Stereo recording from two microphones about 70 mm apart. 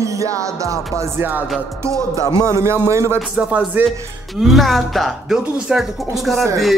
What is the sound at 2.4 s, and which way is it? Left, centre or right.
Speech, right.